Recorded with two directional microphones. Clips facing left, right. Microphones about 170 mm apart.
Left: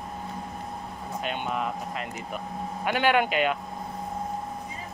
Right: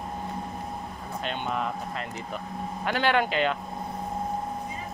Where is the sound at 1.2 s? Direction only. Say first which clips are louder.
Even; 10° left (ahead or behind).